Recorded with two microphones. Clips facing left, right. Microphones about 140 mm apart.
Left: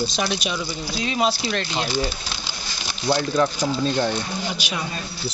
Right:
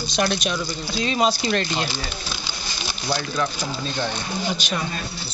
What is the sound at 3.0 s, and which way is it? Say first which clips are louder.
Speech: left 5 dB; 30° left (ahead or behind).